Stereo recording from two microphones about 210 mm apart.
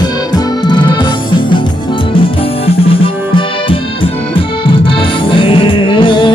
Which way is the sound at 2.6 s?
25° left (ahead or behind).